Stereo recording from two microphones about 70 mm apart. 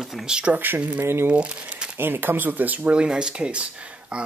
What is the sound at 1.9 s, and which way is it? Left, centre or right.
Speech, right.